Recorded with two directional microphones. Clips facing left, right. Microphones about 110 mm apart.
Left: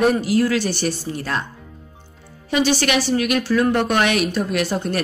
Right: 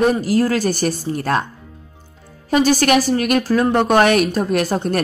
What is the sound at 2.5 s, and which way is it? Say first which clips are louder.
A woman's voice: right 4 dB; 45° right (ahead or behind).